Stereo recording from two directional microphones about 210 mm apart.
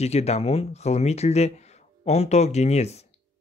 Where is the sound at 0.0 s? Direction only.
30° left (ahead or behind).